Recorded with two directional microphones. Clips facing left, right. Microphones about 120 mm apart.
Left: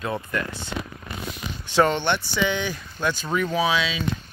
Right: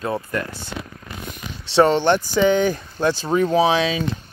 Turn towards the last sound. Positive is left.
turn(degrees=-40)  # may be behind; listen again after turning